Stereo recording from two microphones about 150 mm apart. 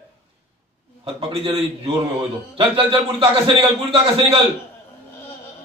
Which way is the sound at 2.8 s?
40° right (ahead or behind).